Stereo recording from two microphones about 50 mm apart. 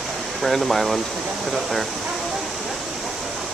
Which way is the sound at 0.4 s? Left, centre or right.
Centre.